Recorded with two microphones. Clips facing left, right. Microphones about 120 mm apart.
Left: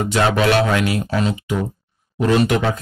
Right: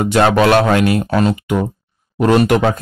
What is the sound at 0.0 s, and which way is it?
Speech, 55° right (ahead or behind).